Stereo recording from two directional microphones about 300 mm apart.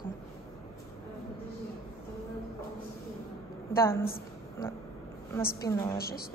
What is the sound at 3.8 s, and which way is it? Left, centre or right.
Speech, centre.